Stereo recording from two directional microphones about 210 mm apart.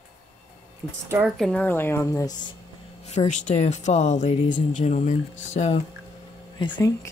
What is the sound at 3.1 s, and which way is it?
Speech, 30° left (ahead or behind).